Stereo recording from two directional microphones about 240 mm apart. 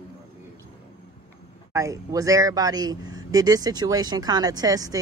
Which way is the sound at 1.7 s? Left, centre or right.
Centre.